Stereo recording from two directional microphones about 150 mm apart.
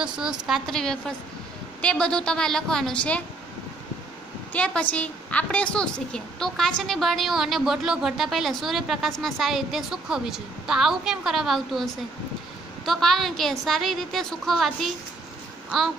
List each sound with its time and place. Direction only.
0.0 s a woman's voice: 5° right (ahead or behind)
4.5 s a woman's voice: 10° left (ahead or behind)